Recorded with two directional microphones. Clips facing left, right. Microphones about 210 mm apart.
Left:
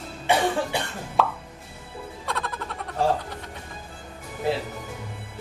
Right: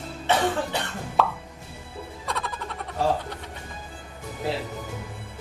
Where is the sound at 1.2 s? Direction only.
Centre (ahead or behind).